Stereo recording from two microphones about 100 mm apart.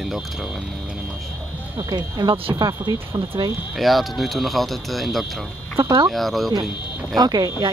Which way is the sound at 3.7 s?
Centre (ahead or behind).